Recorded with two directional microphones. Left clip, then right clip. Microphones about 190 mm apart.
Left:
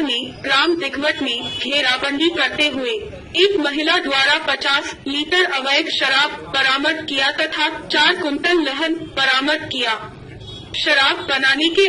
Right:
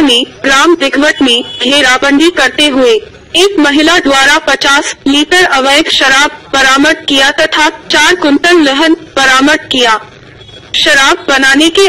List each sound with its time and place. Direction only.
0.0 s a woman's voice: 50° right (ahead or behind)